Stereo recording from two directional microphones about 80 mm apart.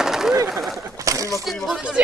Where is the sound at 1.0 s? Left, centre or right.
Right.